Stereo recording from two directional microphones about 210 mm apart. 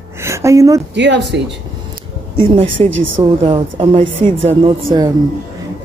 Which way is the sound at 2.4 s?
25° right (ahead or behind).